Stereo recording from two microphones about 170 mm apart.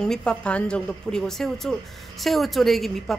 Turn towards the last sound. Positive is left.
turn(degrees=0)  # may be behind; listen again after turning